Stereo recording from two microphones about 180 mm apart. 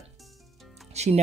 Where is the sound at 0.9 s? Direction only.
35° right (ahead or behind).